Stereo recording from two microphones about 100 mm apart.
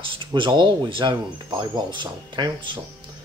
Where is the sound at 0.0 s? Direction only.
55° right (ahead or behind).